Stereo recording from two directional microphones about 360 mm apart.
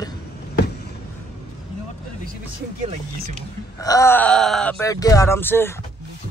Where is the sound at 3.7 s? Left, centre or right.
Centre.